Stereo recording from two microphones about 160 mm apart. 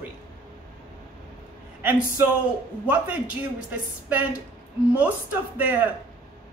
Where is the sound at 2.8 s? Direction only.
10° right (ahead or behind).